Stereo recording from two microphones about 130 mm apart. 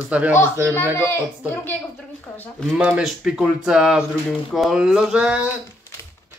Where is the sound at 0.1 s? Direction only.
10° right (ahead or behind).